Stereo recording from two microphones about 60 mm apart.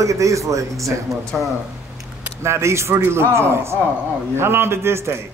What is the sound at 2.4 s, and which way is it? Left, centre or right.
A man's voice, right.